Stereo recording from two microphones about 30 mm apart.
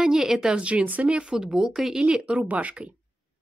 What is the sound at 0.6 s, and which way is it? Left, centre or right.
Speech, right.